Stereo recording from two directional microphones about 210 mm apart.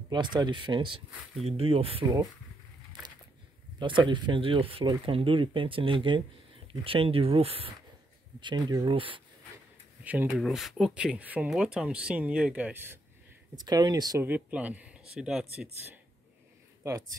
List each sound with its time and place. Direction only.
0.1 s speech: 20° right (ahead or behind)
3.8 s speech: 25° right (ahead or behind)
10.0 s speech: 10° right (ahead or behind)